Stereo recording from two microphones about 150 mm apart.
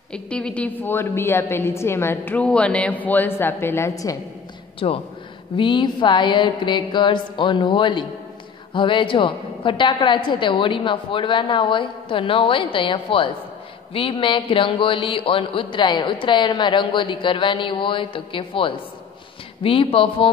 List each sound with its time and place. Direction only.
0.1 s a woman's voice: 5° left (ahead or behind)
4.7 s speech: 40° left (ahead or behind)